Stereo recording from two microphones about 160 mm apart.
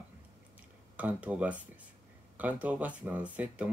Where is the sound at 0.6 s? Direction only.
10° right (ahead or behind).